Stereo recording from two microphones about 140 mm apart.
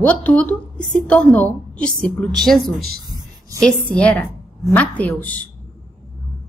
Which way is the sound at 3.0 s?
30° right (ahead or behind).